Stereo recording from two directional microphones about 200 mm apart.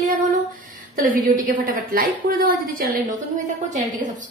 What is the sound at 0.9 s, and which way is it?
A woman's voice, 40° right (ahead or behind).